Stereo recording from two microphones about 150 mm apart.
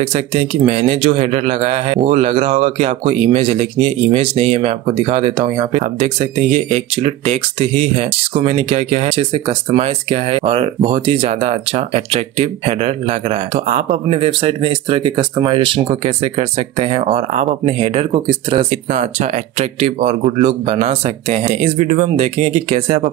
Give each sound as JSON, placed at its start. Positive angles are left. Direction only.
{"t": 0.1, "sound": "a man's voice", "side_deg": -45}
{"t": 19.8, "sound": "a man's voice", "side_deg": -45}